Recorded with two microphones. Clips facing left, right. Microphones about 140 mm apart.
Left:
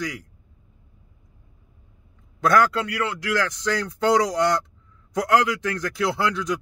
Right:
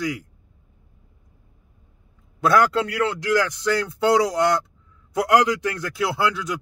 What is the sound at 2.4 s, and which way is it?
Speech, 10° right (ahead or behind).